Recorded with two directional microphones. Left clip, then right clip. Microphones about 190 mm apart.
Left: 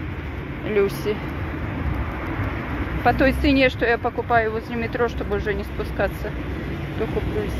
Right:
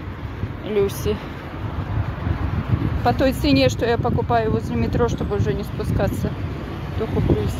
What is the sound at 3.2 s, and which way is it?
Speech, 50° right (ahead or behind).